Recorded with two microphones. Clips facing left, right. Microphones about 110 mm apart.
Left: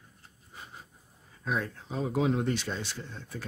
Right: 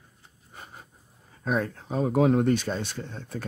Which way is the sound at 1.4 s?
50° right (ahead or behind).